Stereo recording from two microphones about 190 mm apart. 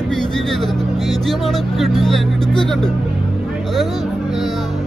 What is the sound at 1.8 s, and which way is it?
Speech, centre (ahead or behind).